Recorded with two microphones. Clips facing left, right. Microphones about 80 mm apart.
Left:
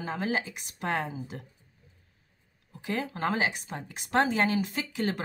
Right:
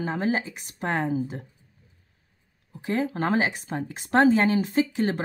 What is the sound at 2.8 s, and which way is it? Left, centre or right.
Speech, right.